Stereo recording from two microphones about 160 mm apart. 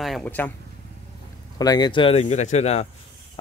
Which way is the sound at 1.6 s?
25° left (ahead or behind).